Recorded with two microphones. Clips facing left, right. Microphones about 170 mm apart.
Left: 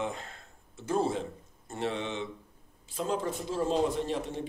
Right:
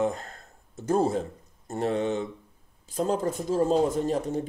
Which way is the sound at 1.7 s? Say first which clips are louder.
Right 7 dB; 40° right (ahead or behind).